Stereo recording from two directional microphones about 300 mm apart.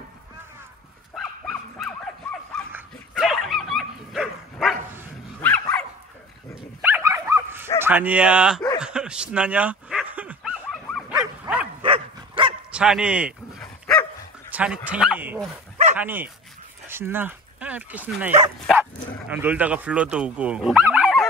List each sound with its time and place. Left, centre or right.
1.1 s dog: centre
6.8 s dog: centre
7.8 s speech: centre
8.7 s dog: centre
11.8 s dog: centre
12.7 s dog: centre
16.0 s speech: centre